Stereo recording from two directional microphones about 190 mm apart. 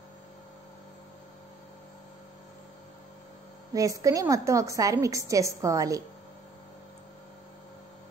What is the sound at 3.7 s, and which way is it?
A woman's voice, 15° right (ahead or behind).